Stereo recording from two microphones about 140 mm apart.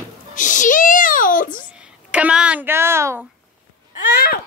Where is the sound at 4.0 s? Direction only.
85° left.